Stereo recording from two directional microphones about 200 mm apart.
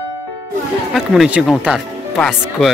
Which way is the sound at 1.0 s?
5° right (ahead or behind).